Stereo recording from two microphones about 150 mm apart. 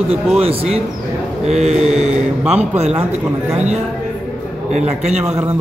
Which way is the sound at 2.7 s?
45° right (ahead or behind).